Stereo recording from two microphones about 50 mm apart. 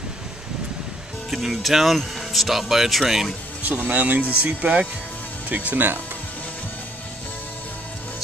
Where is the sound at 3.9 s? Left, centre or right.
Right.